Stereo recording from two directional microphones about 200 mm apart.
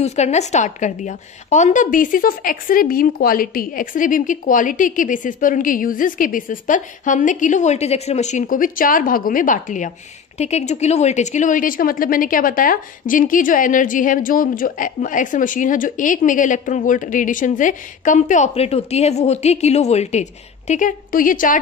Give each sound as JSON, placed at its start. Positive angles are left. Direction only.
{"t": 0.0, "sound": "a woman's voice", "side_deg": 35}